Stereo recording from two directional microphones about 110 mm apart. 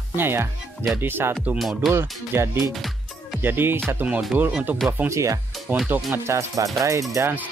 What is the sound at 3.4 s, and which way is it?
Speech, 20° right (ahead or behind).